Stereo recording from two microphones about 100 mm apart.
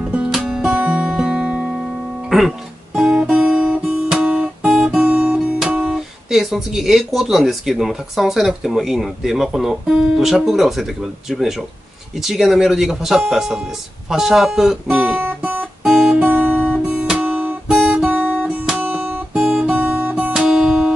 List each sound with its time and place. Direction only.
0.3 s music: 5° right (ahead or behind)
2.2 s guitar: centre (ahead or behind)
4.9 s speech: 10° right (ahead or behind)
15.8 s guitar: 5° right (ahead or behind)
16.2 s guitar: 20° right (ahead or behind)